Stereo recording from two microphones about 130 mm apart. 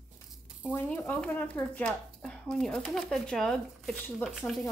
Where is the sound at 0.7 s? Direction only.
15° left (ahead or behind).